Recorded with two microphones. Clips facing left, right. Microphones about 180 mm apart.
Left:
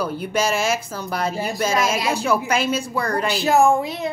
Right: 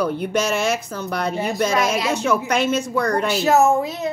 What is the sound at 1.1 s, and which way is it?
Speech, 5° left (ahead or behind).